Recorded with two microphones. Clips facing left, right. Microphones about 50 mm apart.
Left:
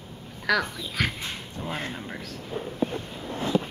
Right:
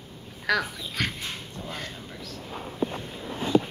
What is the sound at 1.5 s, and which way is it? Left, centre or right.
Speech, left.